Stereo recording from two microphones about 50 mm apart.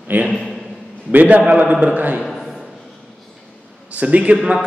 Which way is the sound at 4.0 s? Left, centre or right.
Right.